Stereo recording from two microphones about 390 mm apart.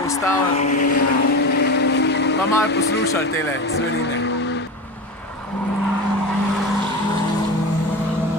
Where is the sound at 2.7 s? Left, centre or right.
Left.